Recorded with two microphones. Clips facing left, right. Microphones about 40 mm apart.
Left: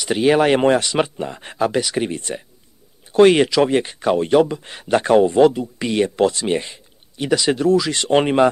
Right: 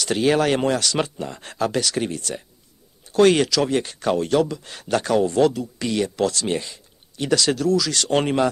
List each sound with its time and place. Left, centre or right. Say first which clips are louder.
0.0 s speech: left 4 dB; centre